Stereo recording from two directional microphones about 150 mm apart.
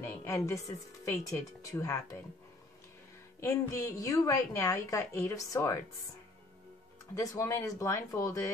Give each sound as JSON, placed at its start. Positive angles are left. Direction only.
{"t": 0.0, "sound": "a woman's voice", "side_deg": 20}
{"t": 3.3, "sound": "a woman's voice", "side_deg": 20}
{"t": 7.2, "sound": "a woman's voice", "side_deg": 20}